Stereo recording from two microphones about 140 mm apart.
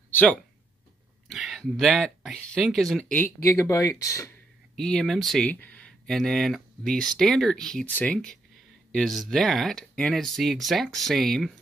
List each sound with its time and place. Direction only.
0.1 s speech: 10° left (ahead or behind)
3.4 s speech: 20° left (ahead or behind)
4.7 s speech: 5° left (ahead or behind)